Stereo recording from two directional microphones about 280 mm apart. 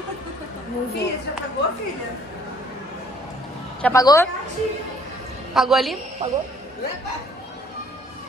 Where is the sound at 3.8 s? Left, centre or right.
Centre.